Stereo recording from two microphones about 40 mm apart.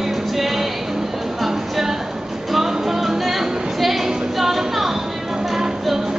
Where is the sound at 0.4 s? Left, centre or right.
Centre.